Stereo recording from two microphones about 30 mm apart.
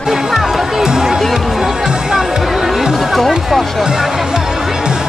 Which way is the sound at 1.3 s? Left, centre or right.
Centre.